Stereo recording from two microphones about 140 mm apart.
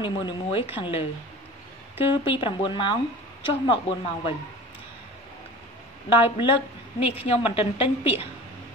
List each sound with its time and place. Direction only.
0.0 s speech: 40° left (ahead or behind)
6.2 s a woman's voice: 40° left (ahead or behind)